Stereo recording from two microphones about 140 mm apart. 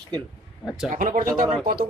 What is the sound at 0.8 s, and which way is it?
Speech, 80° right.